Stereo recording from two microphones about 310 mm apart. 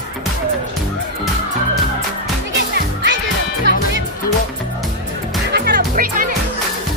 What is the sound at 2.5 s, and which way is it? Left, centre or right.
Music, right.